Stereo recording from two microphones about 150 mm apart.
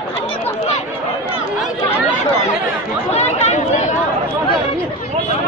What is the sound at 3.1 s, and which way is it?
Chatter, 45° left (ahead or behind).